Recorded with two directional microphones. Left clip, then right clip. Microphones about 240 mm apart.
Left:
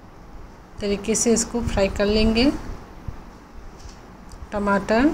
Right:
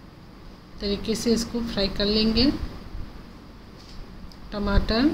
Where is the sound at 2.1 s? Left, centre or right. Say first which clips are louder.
Left 3 dB; left.